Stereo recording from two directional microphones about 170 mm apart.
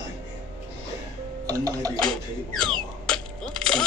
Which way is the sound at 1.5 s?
20° right (ahead or behind).